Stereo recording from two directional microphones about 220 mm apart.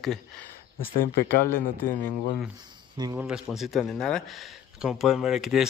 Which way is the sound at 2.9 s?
15° right (ahead or behind).